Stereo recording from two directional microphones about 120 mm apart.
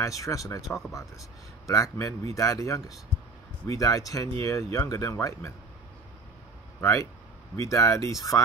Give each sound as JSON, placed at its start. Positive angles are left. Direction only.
{"t": 0.0, "sound": "speech", "side_deg": 25}
{"t": 6.8, "sound": "speech", "side_deg": 25}